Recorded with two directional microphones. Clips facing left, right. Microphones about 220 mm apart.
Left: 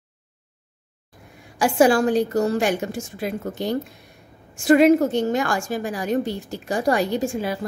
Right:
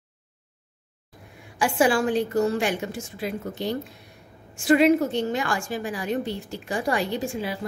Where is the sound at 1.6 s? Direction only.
40° left (ahead or behind).